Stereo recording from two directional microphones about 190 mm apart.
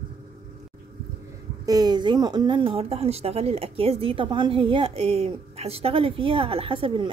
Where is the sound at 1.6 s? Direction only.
20° right (ahead or behind).